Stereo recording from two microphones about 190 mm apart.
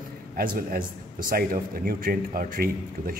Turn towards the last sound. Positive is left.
turn(degrees=-50)  # may be behind; listen again after turning